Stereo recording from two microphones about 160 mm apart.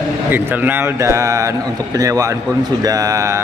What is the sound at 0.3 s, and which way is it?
A man's voice, 10° right (ahead or behind).